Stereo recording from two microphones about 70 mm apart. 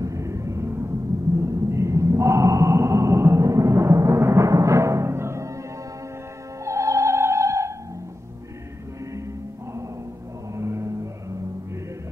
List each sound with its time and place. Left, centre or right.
0.0 s a sound: right
6.6 s music: right
10.5 s music: right